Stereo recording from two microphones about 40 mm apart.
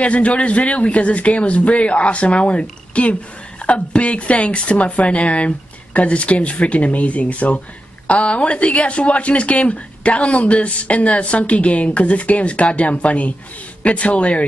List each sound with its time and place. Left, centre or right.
0.0 s a woman's voice: left